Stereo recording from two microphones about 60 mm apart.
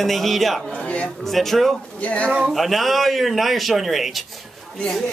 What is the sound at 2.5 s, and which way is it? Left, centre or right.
A man's voice, centre.